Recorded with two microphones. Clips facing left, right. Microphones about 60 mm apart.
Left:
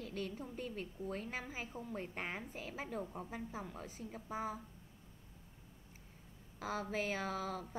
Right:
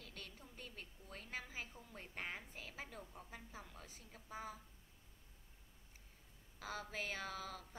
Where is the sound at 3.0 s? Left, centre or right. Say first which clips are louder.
Left 10 dB; left.